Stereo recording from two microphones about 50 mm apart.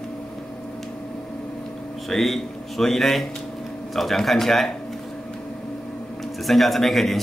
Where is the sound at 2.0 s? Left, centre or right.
Centre.